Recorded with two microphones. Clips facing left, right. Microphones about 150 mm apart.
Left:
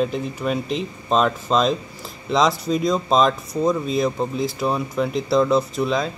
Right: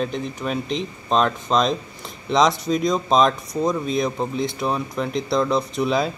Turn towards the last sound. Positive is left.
turn(degrees=-5)  # may be behind; listen again after turning